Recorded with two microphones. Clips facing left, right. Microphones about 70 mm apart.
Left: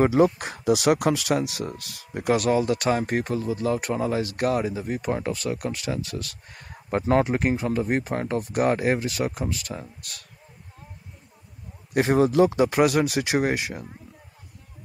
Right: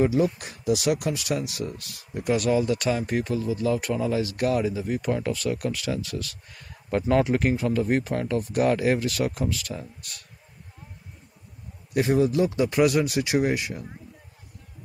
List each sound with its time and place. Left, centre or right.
0.0 s speech: left
11.9 s speech: left